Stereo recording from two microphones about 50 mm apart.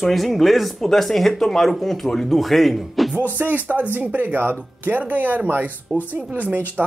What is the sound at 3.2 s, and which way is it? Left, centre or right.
Speech, right.